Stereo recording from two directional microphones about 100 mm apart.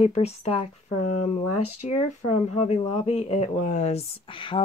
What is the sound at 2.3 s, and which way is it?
Speech, 90° left.